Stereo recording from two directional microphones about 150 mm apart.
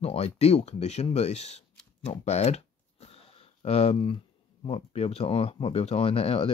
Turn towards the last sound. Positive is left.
turn(degrees=40)  # may be behind; listen again after turning